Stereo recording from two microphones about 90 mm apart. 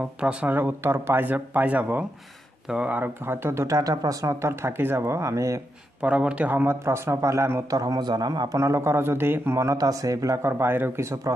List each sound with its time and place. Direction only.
0.2 s speech: 15° right (ahead or behind)
3.0 s speech: 25° right (ahead or behind)
5.9 s speech: 15° right (ahead or behind); by 7.6 s 30° right (ahead or behind)
7.7 s speech: 45° right (ahead or behind)